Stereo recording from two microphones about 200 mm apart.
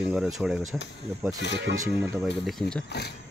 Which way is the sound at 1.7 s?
15° right (ahead or behind).